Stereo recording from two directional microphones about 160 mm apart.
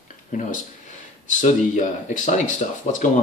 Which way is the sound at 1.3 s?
50° left (ahead or behind).